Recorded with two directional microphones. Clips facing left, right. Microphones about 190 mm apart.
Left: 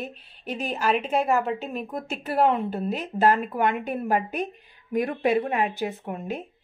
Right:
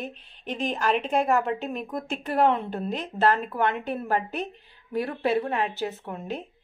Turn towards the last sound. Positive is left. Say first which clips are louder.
# left 2 dB
turn(degrees=10)  # may be behind; listen again after turning